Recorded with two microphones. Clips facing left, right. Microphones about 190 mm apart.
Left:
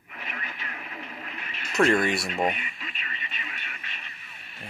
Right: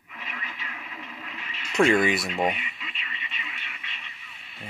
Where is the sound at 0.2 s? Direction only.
50° left (ahead or behind).